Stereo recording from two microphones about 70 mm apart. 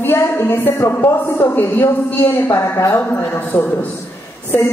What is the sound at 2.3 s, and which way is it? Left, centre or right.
Speech, left.